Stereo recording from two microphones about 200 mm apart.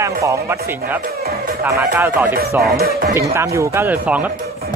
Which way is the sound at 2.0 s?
10° right (ahead or behind).